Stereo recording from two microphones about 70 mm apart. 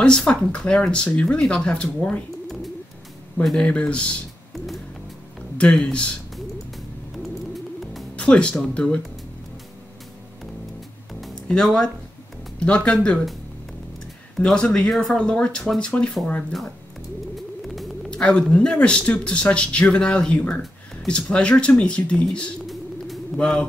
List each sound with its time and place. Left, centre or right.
0.0 s speech: centre
3.5 s speech: centre
5.6 s speech: centre
8.2 s speech: centre
11.4 s speech: centre
14.4 s speech: centre
18.1 s speech: centre